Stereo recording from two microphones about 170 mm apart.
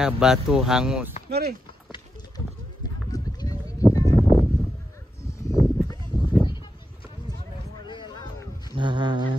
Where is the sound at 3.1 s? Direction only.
20° left (ahead or behind).